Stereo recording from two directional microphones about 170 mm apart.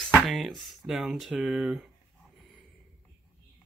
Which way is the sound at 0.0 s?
Centre (ahead or behind).